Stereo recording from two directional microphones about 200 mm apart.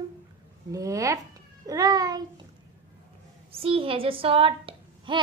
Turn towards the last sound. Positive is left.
turn(degrees=-25)  # may be behind; listen again after turning